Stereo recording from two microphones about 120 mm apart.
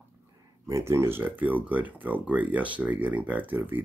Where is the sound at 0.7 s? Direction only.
25° right (ahead or behind).